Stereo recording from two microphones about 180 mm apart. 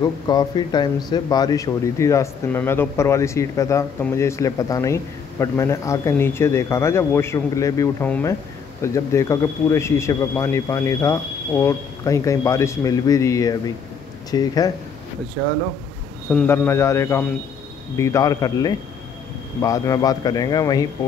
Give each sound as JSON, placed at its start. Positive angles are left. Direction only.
{"t": 0.0, "sound": "a man's voice", "side_deg": 20}
{"t": 16.3, "sound": "a man's voice", "side_deg": 10}